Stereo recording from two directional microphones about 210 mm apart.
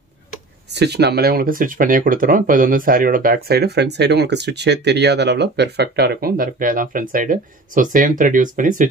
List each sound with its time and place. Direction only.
0.7 s speech: 55° right (ahead or behind)